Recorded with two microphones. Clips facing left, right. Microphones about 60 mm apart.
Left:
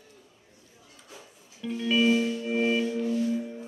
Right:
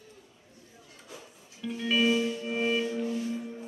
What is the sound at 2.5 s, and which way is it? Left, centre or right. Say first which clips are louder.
Music: left 3 dB; centre.